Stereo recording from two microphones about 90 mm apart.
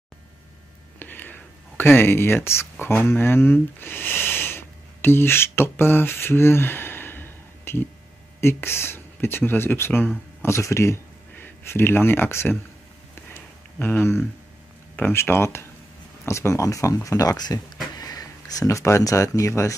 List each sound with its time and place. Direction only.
0.9 s speech: 20° left (ahead or behind)
13.1 s a sound: 25° left (ahead or behind)
15.0 s speech: 20° left (ahead or behind)